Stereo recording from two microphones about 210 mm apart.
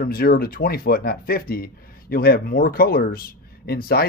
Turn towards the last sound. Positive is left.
turn(degrees=45)  # may be behind; listen again after turning